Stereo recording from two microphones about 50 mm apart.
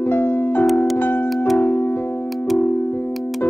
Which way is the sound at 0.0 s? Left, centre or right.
Left.